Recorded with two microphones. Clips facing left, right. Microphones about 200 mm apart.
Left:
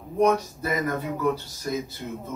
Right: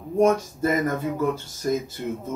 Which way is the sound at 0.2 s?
50° right (ahead or behind).